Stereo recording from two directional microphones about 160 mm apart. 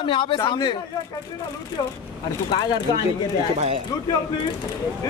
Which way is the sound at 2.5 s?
30° left (ahead or behind).